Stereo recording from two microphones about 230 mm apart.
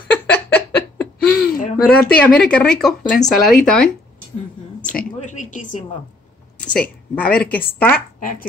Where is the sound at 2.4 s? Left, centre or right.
Centre.